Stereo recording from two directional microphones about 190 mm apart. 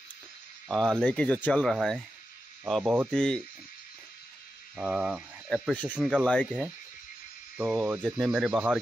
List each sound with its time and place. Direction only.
0.7 s speech: 5° left (ahead or behind)
4.7 s speech: 5° right (ahead or behind)
7.5 s speech: 5° right (ahead or behind)